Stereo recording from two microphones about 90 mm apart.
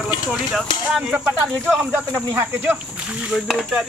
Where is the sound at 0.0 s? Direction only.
Centre (ahead or behind).